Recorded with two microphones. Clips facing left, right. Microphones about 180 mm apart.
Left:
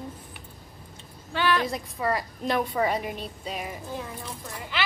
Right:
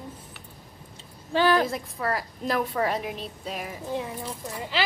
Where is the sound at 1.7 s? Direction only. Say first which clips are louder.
Left 1 dB; centre (ahead or behind).